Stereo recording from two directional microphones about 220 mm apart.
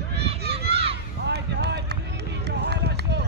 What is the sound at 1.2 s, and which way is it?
Run, 50° right (ahead or behind).